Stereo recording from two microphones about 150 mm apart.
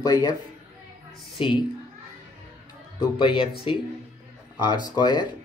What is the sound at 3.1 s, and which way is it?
Speech, 35° left (ahead or behind).